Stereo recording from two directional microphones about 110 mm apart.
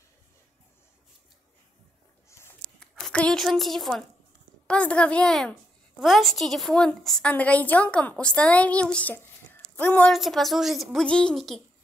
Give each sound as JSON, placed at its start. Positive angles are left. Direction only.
{"t": 2.2, "sound": "a sound", "side_deg": 25}
{"t": 2.8, "sound": "a woman's voice", "side_deg": 5}
{"t": 10.1, "sound": "a woman's voice", "side_deg": 0}